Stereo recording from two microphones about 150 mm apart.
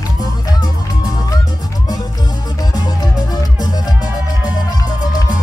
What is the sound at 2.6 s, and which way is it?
Music, 25° left (ahead or behind).